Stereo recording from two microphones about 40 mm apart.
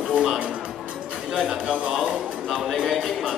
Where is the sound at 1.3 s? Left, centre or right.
Centre.